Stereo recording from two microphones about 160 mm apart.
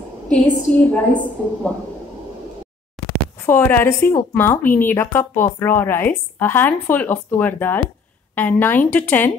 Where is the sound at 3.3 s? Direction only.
15° left (ahead or behind).